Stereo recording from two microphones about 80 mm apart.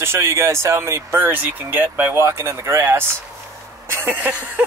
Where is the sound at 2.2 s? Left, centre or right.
Right.